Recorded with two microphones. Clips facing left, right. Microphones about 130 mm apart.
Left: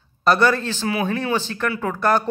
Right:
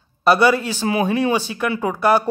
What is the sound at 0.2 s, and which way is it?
Speech, 10° right (ahead or behind).